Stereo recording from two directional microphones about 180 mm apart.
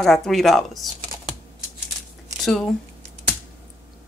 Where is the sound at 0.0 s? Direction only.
Centre (ahead or behind).